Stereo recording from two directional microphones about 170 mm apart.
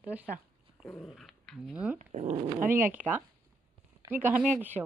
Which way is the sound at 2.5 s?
15° right (ahead or behind).